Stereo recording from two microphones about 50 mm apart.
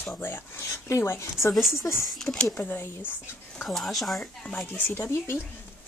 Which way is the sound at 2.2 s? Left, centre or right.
Centre.